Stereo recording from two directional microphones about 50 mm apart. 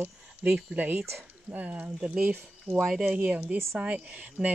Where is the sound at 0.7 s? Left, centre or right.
Right.